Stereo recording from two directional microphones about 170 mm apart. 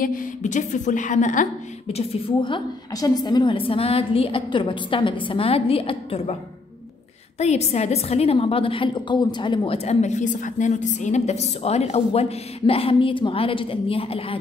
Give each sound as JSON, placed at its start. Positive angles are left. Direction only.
{"t": 0.0, "sound": "a woman's voice", "side_deg": 55}
{"t": 7.3, "sound": "a woman's voice", "side_deg": 40}